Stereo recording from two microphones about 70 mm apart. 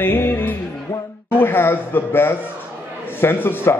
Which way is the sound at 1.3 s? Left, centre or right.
Left.